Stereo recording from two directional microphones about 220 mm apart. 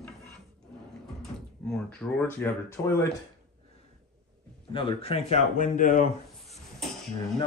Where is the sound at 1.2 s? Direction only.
Centre (ahead or behind).